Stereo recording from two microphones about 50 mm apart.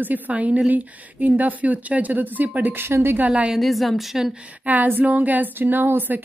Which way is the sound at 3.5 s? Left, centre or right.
Centre.